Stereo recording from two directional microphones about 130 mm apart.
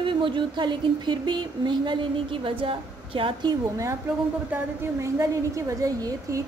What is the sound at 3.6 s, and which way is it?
A woman's voice, 25° right (ahead or behind).